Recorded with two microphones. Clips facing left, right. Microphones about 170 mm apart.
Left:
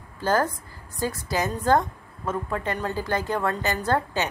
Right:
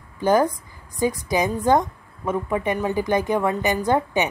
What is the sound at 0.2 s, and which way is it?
A woman's voice, 15° right (ahead or behind).